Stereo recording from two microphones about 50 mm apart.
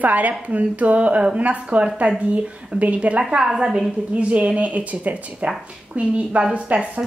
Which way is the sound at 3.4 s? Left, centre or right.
Centre.